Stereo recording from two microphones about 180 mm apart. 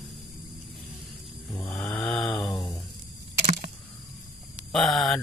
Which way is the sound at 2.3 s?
25° left (ahead or behind).